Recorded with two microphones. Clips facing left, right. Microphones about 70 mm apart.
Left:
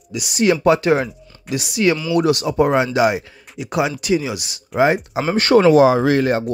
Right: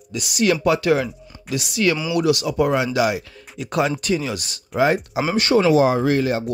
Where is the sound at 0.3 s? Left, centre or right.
Left.